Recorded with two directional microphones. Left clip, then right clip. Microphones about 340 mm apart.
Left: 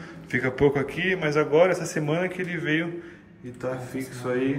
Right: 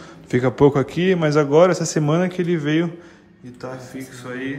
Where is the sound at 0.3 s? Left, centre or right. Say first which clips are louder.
Right 6 dB; centre.